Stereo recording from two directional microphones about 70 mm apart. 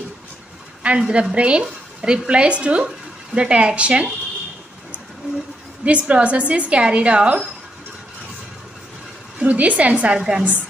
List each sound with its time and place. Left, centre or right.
0.8 s a woman's voice: centre
5.9 s a woman's voice: centre
9.4 s a woman's voice: centre